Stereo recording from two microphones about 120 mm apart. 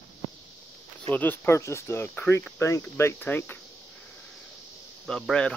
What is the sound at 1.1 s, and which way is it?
Speech, 15° left (ahead or behind).